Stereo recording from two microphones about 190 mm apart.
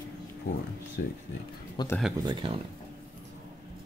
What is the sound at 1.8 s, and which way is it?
Speech, 20° left (ahead or behind).